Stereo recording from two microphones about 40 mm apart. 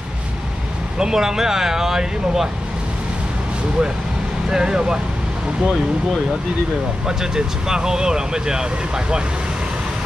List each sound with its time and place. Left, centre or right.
0.9 s speech: centre
4.5 s speech: centre
7.1 s speech: centre